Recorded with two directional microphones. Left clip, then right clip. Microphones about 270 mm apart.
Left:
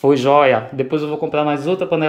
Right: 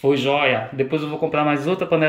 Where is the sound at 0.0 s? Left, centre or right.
Centre.